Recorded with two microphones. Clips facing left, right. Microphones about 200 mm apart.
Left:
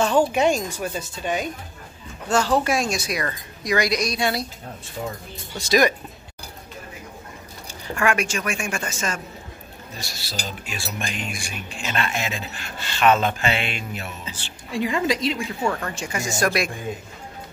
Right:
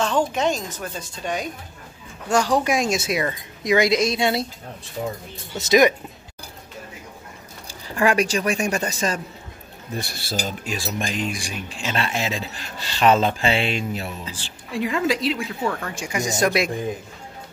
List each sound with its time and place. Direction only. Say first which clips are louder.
0.0 s a woman's voice: left 3 dB; 10° left (ahead or behind)
2.2 s a woman's voice: right 1 dB; 15° right (ahead or behind)
5.6 s a woman's voice: right 3 dB; 20° right (ahead or behind)
7.6 s speech: right 2 dB; 35° right (ahead or behind)
9.9 s speech: right 7 dB; 55° right (ahead or behind); by 14.1 s 35° right (ahead or behind)
14.7 s speech: even; centre (ahead or behind); by 16.7 s 20° right (ahead or behind)